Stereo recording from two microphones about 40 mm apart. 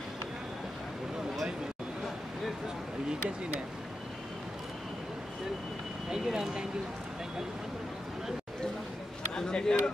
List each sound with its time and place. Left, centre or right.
6.0 s speech: centre
9.3 s speech: centre